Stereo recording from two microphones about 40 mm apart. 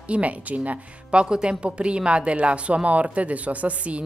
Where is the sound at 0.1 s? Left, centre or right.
Right.